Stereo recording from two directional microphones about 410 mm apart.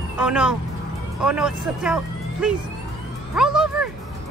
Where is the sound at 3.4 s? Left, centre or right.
Centre.